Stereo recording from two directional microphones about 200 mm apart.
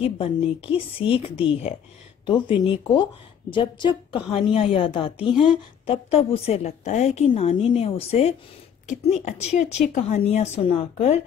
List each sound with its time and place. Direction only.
0.0 s a woman's voice: 30° left (ahead or behind)